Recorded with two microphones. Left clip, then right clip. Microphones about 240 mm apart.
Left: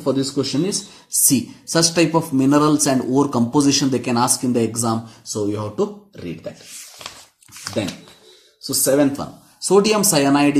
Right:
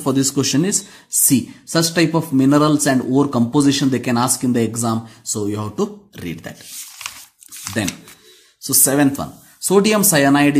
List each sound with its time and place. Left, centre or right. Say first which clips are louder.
0.0 s speech: right 2 dB; right
1.2 s speech: right 1 dB; right
8.6 s speech: even; right